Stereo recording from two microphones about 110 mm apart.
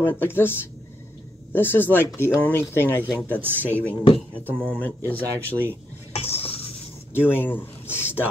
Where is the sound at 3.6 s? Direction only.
15° left (ahead or behind).